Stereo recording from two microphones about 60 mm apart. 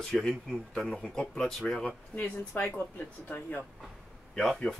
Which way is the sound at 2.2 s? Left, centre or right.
Left.